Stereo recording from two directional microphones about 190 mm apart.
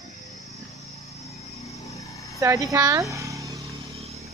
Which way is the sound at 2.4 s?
15° right (ahead or behind).